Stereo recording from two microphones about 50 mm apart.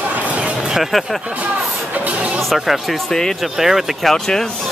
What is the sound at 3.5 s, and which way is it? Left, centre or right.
Speech, centre.